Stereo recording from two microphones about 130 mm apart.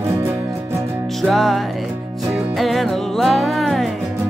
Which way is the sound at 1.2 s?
Centre (ahead or behind).